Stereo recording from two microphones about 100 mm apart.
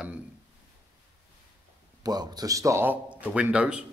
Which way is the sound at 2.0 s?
40° right (ahead or behind).